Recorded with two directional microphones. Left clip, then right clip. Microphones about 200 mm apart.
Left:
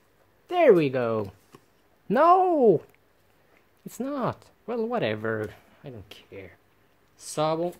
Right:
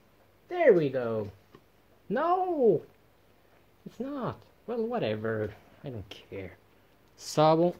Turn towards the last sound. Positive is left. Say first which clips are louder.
# right 3 dB
turn(degrees=-15)  # may be behind; listen again after turning